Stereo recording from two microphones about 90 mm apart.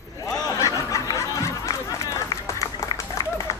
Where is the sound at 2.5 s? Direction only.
35° left (ahead or behind).